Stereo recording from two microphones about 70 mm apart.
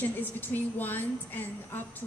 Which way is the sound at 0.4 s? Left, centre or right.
Left.